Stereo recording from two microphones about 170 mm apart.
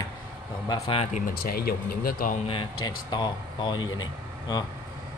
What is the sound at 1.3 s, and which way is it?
Speech, 65° left (ahead or behind).